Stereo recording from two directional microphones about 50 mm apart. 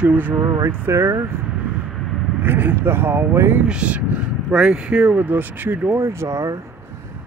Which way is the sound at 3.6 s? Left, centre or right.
Right.